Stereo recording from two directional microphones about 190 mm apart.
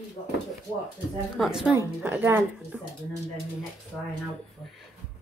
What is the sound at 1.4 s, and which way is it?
A woman's voice, 5° right (ahead or behind).